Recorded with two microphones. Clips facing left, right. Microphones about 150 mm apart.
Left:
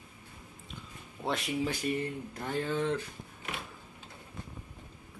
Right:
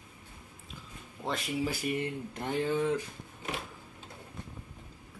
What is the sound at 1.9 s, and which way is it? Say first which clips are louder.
Speech: right 1 dB; 20° right (ahead or behind).